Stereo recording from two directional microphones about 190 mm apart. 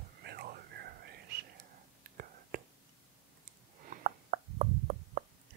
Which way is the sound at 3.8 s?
45° right (ahead or behind).